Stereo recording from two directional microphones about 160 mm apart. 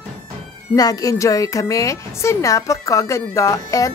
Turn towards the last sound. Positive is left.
turn(degrees=20)  # may be behind; listen again after turning